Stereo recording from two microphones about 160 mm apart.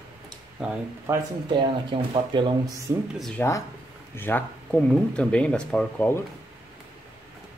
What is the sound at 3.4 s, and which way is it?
Speech, 10° left (ahead or behind).